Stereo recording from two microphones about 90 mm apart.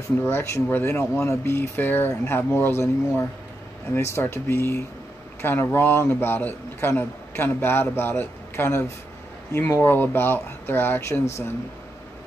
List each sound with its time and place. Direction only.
0.2 s a man's voice: 25° left (ahead or behind)